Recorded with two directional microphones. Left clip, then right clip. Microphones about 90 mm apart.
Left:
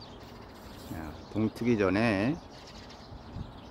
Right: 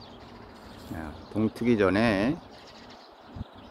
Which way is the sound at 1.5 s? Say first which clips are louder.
Right 4 dB; 20° right (ahead or behind).